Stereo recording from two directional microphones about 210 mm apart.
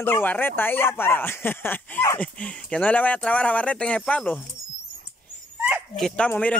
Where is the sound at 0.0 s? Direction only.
10° left (ahead or behind).